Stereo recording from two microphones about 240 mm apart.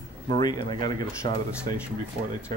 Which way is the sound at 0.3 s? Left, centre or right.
Centre.